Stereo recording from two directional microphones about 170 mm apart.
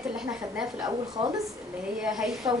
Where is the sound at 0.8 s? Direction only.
25° right (ahead or behind).